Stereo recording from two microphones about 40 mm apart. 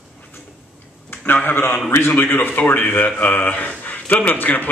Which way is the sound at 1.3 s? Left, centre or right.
Left.